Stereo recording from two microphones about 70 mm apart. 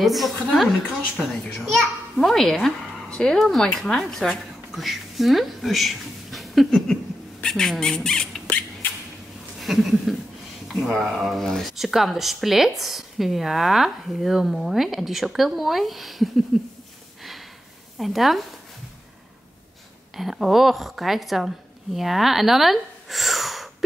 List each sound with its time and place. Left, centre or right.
0.0 s a child's voice: centre
9.6 s a sound: centre
10.7 s speech: centre
17.9 s speech: centre
20.2 s speech: centre